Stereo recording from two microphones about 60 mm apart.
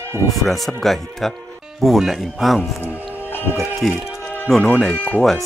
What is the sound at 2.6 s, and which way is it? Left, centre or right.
Music, left.